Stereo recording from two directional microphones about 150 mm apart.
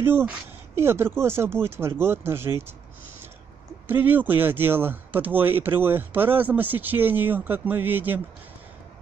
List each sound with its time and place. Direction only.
0.0 s speech: 15° right (ahead or behind)
3.8 s speech: 10° right (ahead or behind)